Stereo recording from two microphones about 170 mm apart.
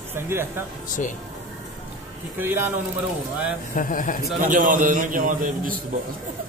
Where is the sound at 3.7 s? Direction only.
50° left (ahead or behind).